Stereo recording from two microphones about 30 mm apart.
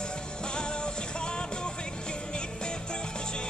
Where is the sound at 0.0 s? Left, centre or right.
Left.